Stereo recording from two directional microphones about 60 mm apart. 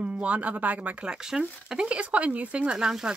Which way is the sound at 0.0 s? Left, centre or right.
Right.